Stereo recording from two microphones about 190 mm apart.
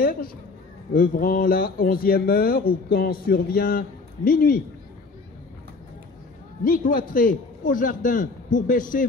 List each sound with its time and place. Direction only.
0.9 s speech: 45° left (ahead or behind)
6.6 s speech: 45° left (ahead or behind)